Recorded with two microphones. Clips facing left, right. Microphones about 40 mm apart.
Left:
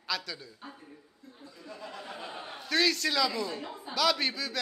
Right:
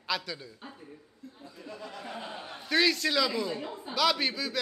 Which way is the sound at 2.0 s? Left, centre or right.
Right.